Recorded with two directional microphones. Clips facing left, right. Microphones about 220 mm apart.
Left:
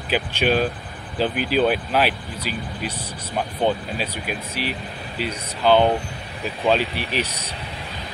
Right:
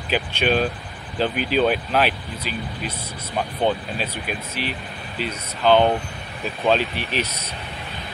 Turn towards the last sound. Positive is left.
turn(degrees=10)  # may be behind; listen again after turning